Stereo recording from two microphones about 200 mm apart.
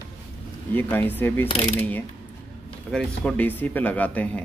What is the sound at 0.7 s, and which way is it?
Speech, 10° left (ahead or behind).